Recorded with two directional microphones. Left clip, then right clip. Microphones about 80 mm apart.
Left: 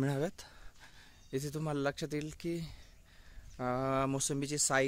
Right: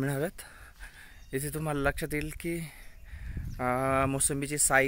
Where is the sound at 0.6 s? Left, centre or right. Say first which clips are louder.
Right 8 dB; left.